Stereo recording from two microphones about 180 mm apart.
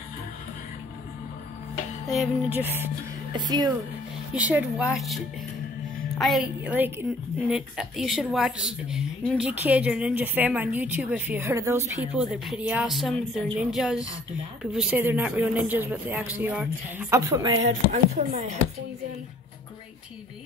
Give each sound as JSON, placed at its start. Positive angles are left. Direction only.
{"t": 2.0, "sound": "a woman's voice", "side_deg": 0}
{"t": 2.6, "sound": "a woman's voice", "side_deg": -10}
{"t": 3.3, "sound": "speech", "side_deg": -25}
{"t": 4.4, "sound": "a woman's voice", "side_deg": -10}
{"t": 17.9, "sound": "speech", "side_deg": -40}